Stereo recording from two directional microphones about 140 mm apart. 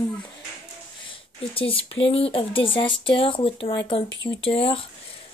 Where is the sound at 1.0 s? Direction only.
40° left (ahead or behind).